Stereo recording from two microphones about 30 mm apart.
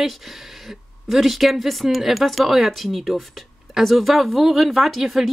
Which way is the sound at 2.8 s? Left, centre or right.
Centre.